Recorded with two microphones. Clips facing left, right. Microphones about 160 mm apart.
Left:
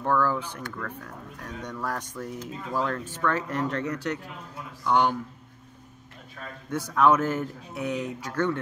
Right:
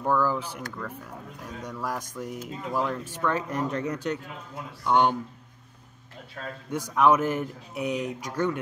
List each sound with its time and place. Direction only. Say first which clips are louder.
0.0 s speech: even; 10° right (ahead or behind)
6.7 s speech: even; 15° right (ahead or behind)